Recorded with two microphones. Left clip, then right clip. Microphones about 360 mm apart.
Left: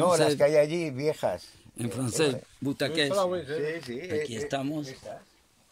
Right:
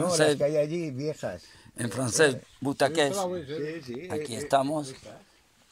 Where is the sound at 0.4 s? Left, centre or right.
Left.